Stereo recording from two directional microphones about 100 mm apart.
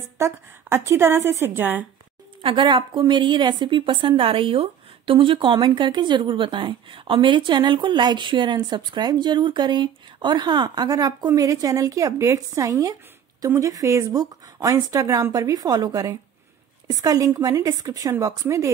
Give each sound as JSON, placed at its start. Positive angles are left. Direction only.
{"t": 0.2, "sound": "a woman's voice", "side_deg": -25}
{"t": 2.4, "sound": "a woman's voice", "side_deg": -55}